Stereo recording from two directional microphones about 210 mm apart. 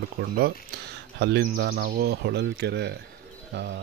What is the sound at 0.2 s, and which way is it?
Speech, 50° right (ahead or behind).